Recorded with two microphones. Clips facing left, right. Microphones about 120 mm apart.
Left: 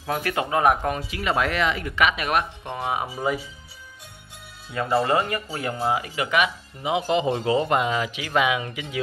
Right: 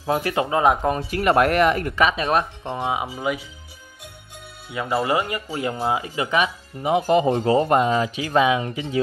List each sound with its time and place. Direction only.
0.0 s speech: 25° right (ahead or behind)
0.9 s speech: 50° right (ahead or behind)
2.0 s speech: 30° right (ahead or behind)
5.0 s speech: 15° right (ahead or behind)
6.8 s speech: 45° right (ahead or behind)